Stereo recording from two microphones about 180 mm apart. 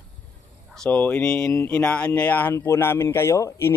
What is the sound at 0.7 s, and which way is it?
Speech, 5° left (ahead or behind).